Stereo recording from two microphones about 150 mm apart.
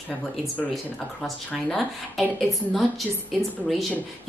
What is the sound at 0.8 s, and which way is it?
A woman's voice, 5° left (ahead or behind).